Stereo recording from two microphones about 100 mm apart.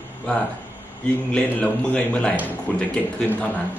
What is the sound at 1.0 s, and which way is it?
A man's voice, 15° left (ahead or behind).